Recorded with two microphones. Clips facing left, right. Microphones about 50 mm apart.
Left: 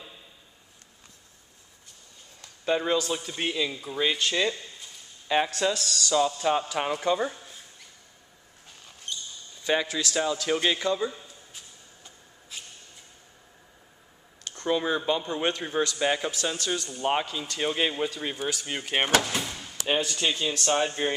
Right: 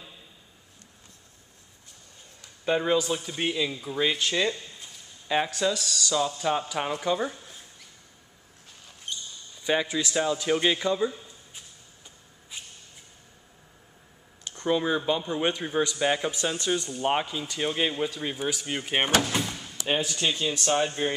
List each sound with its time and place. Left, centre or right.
2.6 s speech: centre
9.1 s basketball bounce: centre
9.6 s a sound: centre
9.8 s speech: centre
11.5 s a sound: centre
14.5 s a sound: centre
14.8 s speech: centre
16.5 s speech: right
17.6 s speech: centre
19.5 s door: centre
20.0 s speech: centre